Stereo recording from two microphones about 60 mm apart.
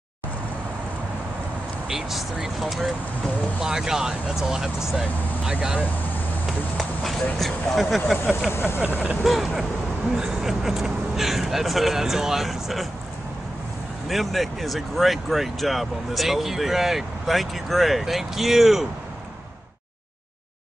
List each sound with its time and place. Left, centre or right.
1.9 s speech: centre
6.4 s a sound: centre
7.3 s speech: centre
8.5 s speech: left
8.8 s speech: right
9.2 s speech: centre
14.0 s speech: centre